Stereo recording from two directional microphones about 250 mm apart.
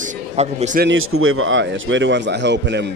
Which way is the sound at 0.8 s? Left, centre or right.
Right.